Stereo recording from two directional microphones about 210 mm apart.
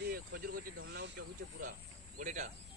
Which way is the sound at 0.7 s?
60° right (ahead or behind).